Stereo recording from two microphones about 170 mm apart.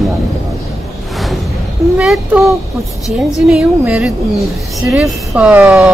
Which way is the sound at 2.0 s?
5° right (ahead or behind).